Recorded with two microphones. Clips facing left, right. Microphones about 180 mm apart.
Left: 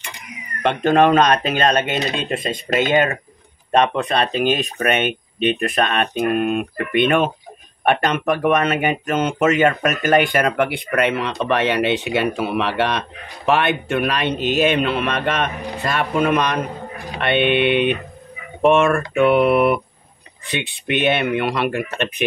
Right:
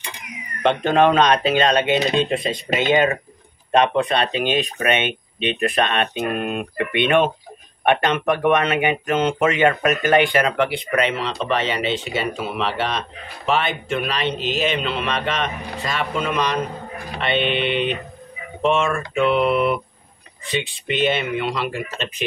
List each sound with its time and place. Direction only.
0.8 s a man's voice: 45° left (ahead or behind); by 22.2 s 60° left (ahead or behind)